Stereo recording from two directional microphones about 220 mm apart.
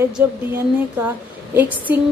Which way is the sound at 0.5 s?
10° right (ahead or behind).